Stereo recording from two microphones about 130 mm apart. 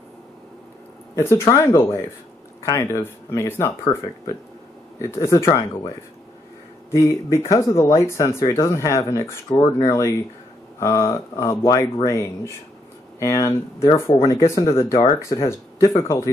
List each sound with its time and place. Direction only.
1.1 s speech: 20° left (ahead or behind)
2.6 s speech: 25° left (ahead or behind)
6.9 s speech: 20° left (ahead or behind)